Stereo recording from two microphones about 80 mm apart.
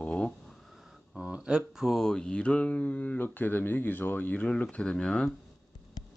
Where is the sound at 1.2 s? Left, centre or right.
Centre.